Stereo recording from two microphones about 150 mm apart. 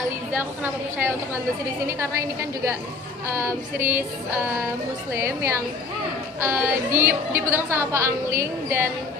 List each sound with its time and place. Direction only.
1.9 s a woman's voice: 20° right (ahead or behind)
5.1 s a woman's voice: 20° right (ahead or behind)